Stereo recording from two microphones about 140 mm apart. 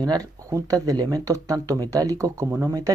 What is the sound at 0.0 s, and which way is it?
Speech, 25° right (ahead or behind).